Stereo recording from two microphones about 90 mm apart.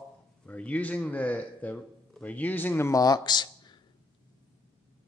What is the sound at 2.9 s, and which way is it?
Speech, 40° left (ahead or behind).